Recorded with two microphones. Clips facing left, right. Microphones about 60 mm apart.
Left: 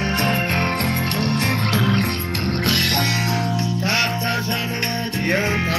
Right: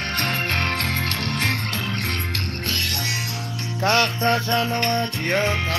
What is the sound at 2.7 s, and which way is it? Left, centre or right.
Music, left.